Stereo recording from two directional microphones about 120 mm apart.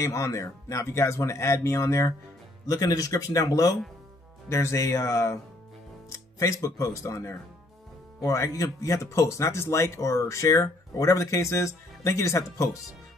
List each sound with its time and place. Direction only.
0.0 s speech: 25° left (ahead or behind)